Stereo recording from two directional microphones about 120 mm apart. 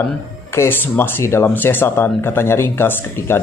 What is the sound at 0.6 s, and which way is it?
Speech, 20° left (ahead or behind).